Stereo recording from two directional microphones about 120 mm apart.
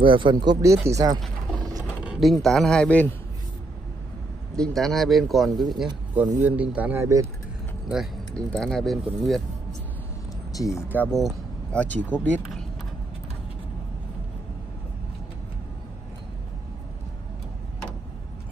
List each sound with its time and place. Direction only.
0.0 s speech: 45° right (ahead or behind)
0.6 s speech: 25° right (ahead or behind)
1.8 s a sound: 5° right (ahead or behind)
2.2 s speech: centre (ahead or behind)
4.6 s speech: 5° left (ahead or behind)
6.4 s speech: 10° right (ahead or behind)
8.4 s speech: 5° left (ahead or behind)
10.6 s speech: 25° left (ahead or behind)
11.0 s speech: centre (ahead or behind)
11.8 s speech: 15° left (ahead or behind)